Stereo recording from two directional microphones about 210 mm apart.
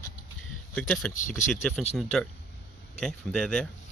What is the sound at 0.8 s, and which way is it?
Speech, 5° left (ahead or behind).